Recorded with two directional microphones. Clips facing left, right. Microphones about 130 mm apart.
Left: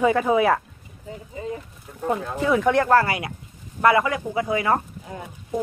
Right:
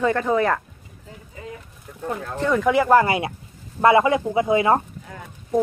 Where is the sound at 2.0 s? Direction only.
10° left (ahead or behind).